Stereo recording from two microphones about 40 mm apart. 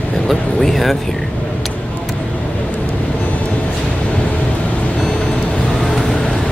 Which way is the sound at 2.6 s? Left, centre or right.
Left.